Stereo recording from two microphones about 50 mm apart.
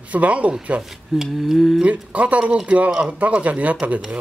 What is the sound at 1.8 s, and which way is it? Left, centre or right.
Speech, right.